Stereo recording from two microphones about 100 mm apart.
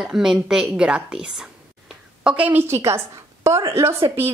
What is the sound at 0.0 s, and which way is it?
A woman's voice, 5° right (ahead or behind).